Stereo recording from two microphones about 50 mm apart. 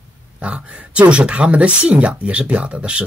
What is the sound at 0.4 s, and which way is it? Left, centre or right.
Speech, right.